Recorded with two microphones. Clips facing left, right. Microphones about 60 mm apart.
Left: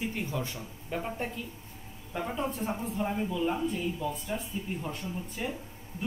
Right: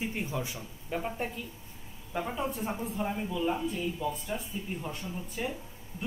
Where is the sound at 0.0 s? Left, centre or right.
Centre.